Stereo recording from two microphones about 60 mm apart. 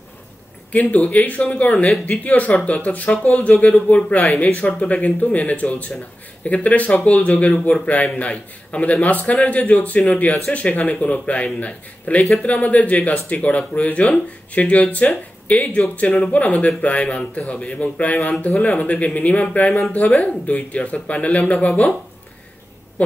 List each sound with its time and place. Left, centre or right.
0.7 s a man's voice: left
23.0 s a man's voice: left